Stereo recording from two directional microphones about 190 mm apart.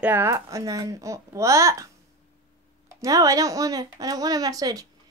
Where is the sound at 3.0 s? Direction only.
20° right (ahead or behind).